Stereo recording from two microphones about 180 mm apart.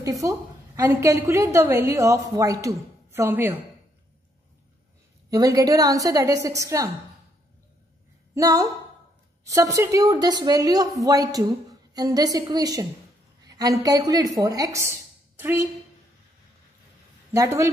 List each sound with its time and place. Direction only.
0.0 s a woman's voice: 20° right (ahead or behind)
5.3 s a woman's voice: 20° right (ahead or behind)
8.4 s a woman's voice: 20° right (ahead or behind)
17.3 s speech: 15° right (ahead or behind)